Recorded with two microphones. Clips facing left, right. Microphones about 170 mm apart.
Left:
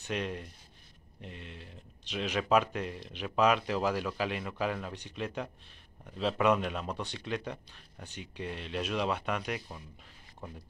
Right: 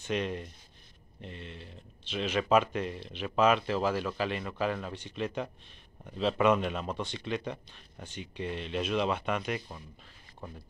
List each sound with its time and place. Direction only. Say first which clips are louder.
0.1 s speech: right 3 dB; 5° left (ahead or behind)